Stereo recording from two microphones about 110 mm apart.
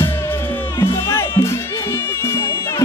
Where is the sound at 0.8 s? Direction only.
25° left (ahead or behind).